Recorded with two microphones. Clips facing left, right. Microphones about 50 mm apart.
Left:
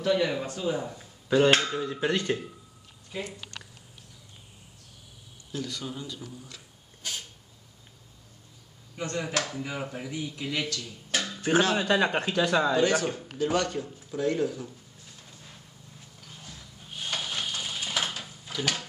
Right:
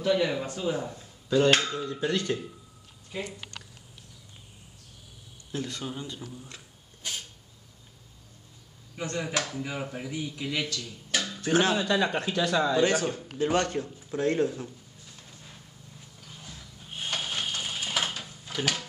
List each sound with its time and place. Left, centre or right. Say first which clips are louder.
0.0 s speech: even; centre
1.9 s speech: left 1 dB; centre
3.1 s speech: even; centre
5.5 s a man's voice: right 1 dB; right
8.9 s speech: even; centre
11.9 s a man's voice: left 1 dB; left
12.9 s speech: left 1 dB; centre
13.4 s speech: right 1 dB; right
15.2 s vehicle: even; centre
16.3 s a sound: right 1 dB; centre